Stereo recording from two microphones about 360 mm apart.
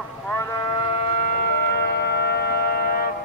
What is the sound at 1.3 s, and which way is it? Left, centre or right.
Music, left.